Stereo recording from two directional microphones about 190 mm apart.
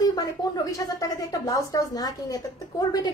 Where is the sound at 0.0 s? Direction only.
20° left (ahead or behind).